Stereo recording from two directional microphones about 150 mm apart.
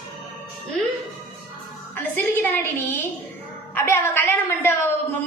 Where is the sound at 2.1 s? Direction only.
10° left (ahead or behind).